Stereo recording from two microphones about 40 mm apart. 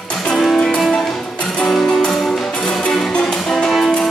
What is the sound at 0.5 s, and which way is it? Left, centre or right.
Music, centre.